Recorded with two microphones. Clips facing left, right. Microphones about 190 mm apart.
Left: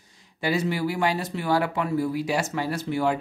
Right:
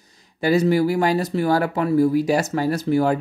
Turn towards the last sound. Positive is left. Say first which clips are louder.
# right 6 dB
turn(degrees=-40)  # may be behind; listen again after turning